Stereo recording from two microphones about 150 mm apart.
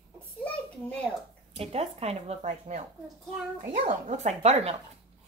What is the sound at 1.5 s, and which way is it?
Speech, 40° right (ahead or behind).